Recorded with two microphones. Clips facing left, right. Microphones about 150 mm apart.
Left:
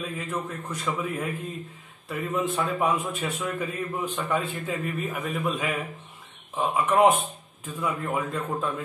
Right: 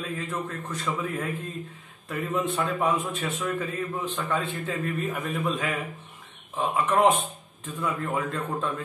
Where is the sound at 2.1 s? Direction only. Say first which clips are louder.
Even; centre (ahead or behind).